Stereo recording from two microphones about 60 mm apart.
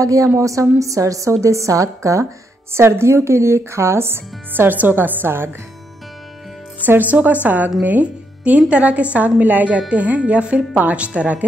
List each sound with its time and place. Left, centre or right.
0.0 s a woman's voice: right
2.7 s speech: right
7.0 s speech: right